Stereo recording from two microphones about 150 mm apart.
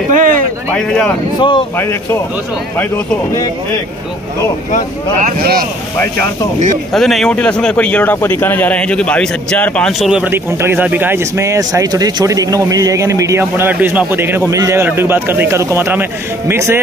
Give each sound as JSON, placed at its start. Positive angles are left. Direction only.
{"t": 0.1, "sound": "a sound", "side_deg": -60}
{"t": 0.7, "sound": "speech", "side_deg": 5}
{"t": 1.4, "sound": "speech", "side_deg": 35}
{"t": 1.8, "sound": "speech", "side_deg": 15}
{"t": 5.2, "sound": "speech", "side_deg": -80}
{"t": 6.9, "sound": "speech", "side_deg": 0}